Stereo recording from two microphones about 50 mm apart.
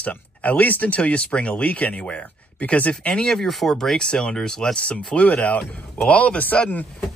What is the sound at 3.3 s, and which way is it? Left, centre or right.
Speech, centre.